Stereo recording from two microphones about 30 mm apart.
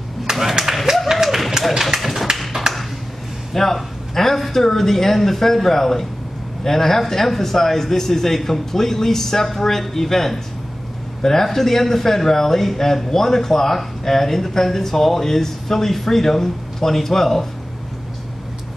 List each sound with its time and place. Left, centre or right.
0.3 s speech: centre
1.1 s run: centre
1.7 s speech: centre
2.0 s tap: centre
2.7 s ping: centre
3.5 s a man's voice: centre